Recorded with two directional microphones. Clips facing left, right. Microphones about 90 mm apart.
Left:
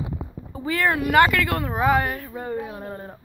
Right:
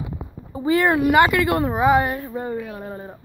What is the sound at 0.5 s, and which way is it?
Speech, 20° right (ahead or behind).